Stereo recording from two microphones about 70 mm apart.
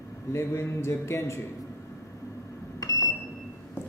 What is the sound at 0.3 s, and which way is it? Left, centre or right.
Speech, left.